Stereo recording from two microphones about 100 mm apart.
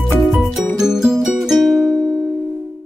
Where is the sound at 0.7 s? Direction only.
5° right (ahead or behind).